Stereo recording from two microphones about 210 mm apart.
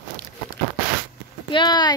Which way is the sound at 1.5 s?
20° left (ahead or behind).